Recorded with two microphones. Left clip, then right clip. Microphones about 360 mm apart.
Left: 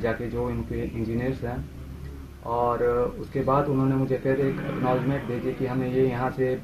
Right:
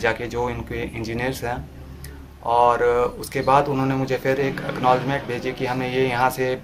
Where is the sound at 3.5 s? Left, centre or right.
Right.